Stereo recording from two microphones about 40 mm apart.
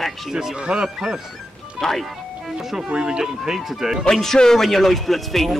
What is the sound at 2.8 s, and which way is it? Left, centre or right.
Speech, right.